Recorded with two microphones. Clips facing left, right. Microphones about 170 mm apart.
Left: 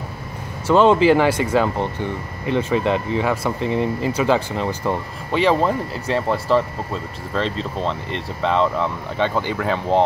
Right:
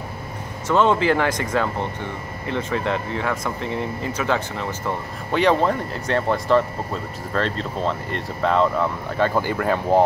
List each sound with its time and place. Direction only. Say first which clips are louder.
0.7 s speech: left 4 dB; 20° left (ahead or behind)
2.7 s speech: left 4 dB; 15° left (ahead or behind)
5.3 s speech: left 1 dB; centre (ahead or behind)